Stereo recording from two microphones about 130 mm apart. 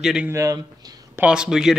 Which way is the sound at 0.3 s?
25° right (ahead or behind).